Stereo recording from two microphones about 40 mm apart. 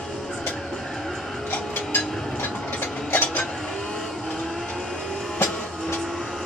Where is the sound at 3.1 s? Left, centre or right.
Left.